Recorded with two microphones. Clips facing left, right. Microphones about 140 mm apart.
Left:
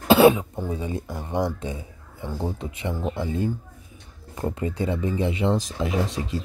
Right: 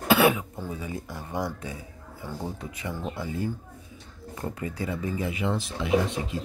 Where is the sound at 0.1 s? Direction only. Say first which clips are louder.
Left 6 dB; 25° left (ahead or behind).